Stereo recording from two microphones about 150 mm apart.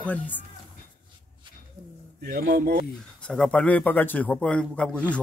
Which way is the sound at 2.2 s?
90° right.